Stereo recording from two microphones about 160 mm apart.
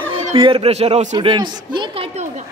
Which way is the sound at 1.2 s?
30° right (ahead or behind).